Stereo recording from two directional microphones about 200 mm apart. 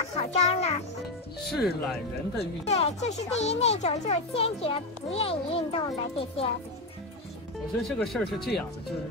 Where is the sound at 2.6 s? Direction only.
35° left (ahead or behind).